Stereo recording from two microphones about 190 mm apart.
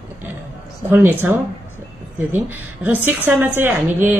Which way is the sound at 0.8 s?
10° right (ahead or behind).